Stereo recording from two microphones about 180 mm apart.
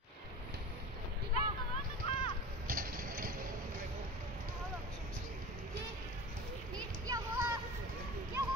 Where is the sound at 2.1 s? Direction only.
35° left (ahead or behind).